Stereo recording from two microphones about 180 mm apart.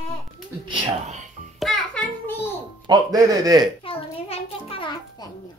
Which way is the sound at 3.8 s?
30° left (ahead or behind).